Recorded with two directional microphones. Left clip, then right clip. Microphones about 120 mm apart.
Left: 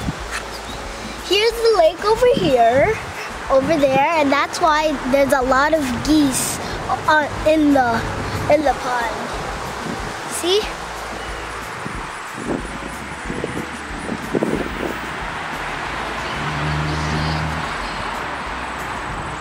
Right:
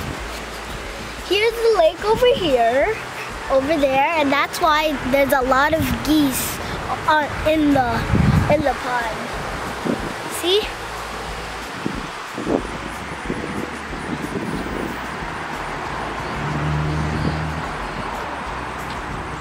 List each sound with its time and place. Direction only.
1.3 s speech: 10° left (ahead or behind)
10.4 s speech: 5° left (ahead or behind)
16.6 s vehicle: 45° left (ahead or behind)